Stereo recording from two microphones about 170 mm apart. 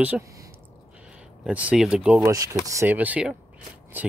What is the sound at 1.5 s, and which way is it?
Speech, 5° right (ahead or behind).